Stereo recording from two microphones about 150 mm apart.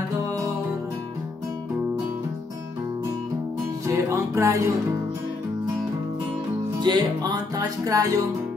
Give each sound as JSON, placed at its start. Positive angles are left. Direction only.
{"t": 3.8, "sound": "music", "side_deg": -20}
{"t": 6.8, "sound": "music", "side_deg": -30}
{"t": 7.5, "sound": "speech", "side_deg": -25}